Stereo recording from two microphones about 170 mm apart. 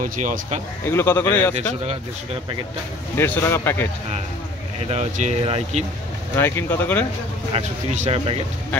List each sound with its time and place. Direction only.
0.0 s speech: 45° right (ahead or behind)
0.8 s speech: 15° left (ahead or behind)
3.2 s speech: 15° left (ahead or behind)
4.8 s speech: 40° right (ahead or behind)
6.3 s speech: 15° left (ahead or behind)
7.5 s speech: 40° right (ahead or behind)